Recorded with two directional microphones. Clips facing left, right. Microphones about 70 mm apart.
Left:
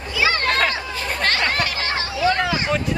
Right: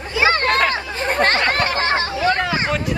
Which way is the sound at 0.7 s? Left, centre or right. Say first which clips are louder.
Right 4 dB; right.